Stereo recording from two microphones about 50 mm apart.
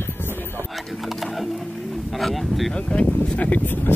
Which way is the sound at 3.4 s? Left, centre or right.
Left.